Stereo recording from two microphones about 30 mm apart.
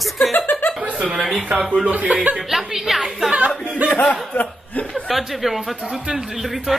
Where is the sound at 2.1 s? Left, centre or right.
Right.